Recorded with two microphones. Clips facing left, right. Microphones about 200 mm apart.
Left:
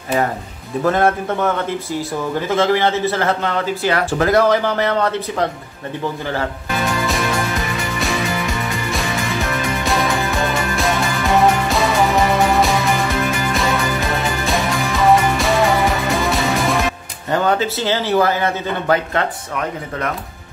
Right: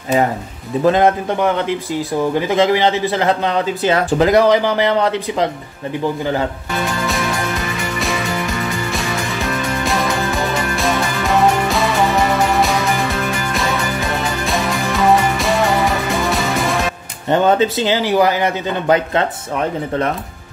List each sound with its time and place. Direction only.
0.8 s a man's voice: 15° right (ahead or behind)
6.8 s music: centre (ahead or behind)
8.6 s music: centre (ahead or behind)
17.3 s a man's voice: 20° right (ahead or behind)